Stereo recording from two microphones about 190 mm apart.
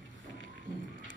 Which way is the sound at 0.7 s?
20° right (ahead or behind).